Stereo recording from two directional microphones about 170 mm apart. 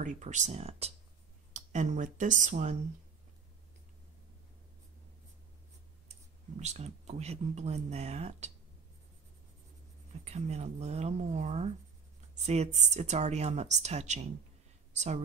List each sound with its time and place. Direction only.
0.0 s speech: 45° right (ahead or behind)
6.6 s speech: 40° right (ahead or behind)
10.2 s speech: 40° right (ahead or behind)